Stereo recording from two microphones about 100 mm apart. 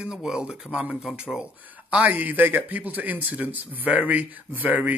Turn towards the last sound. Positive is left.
turn(degrees=-15)  # may be behind; listen again after turning